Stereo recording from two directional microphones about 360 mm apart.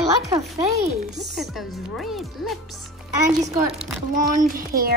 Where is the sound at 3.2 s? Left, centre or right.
Centre.